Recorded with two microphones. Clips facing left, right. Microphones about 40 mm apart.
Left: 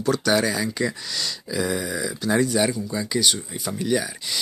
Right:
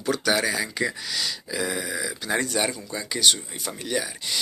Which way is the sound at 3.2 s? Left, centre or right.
Right.